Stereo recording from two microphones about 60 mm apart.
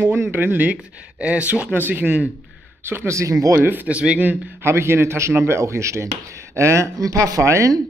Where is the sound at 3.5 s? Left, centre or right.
Right.